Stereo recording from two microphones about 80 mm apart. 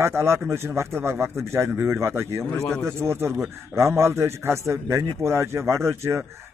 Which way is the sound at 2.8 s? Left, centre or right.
Right.